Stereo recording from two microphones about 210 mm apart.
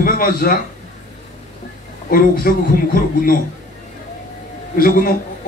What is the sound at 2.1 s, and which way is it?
A man's voice, 45° left (ahead or behind).